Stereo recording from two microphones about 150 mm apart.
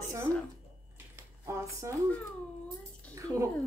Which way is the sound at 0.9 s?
20° right (ahead or behind).